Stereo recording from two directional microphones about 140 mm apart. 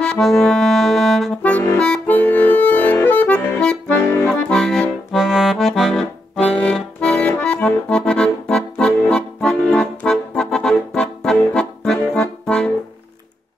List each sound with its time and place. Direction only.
0.0 s music: 5° left (ahead or behind)
1.8 s accordion: 10° left (ahead or behind)
4.3 s accordion: 5° left (ahead or behind)